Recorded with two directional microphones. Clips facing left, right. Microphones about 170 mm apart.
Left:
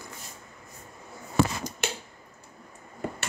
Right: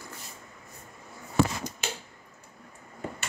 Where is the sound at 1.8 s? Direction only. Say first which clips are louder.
Left 6 dB; 70° left (ahead or behind).